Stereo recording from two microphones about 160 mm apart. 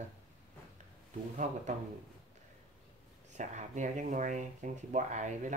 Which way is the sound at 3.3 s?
50° right (ahead or behind).